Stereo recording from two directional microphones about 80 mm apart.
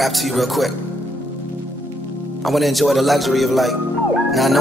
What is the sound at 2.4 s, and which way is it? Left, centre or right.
A man's voice, centre.